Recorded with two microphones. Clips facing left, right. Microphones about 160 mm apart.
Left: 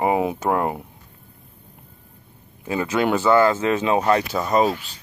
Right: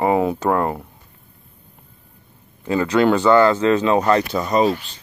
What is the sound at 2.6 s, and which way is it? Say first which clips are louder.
Speech: right 5 dB; 10° left (ahead or behind).